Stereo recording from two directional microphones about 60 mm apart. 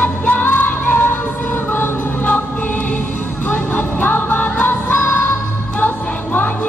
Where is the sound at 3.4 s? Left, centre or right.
Left.